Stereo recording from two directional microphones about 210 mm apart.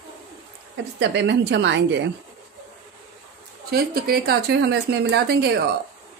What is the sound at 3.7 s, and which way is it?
Speech, 45° right (ahead or behind).